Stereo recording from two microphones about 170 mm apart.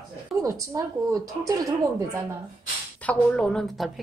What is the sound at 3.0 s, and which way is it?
Speech, 10° left (ahead or behind).